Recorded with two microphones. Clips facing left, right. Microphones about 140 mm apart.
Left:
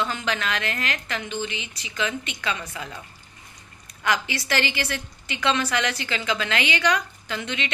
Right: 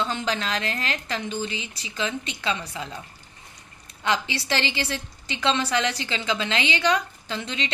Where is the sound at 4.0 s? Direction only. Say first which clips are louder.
Even; 25° right (ahead or behind).